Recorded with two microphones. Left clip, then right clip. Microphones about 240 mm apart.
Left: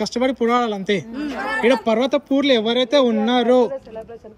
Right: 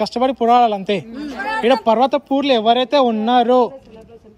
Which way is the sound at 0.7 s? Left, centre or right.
Centre.